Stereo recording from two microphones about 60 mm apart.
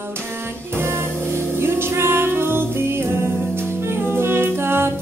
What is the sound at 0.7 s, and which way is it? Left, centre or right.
Music, right.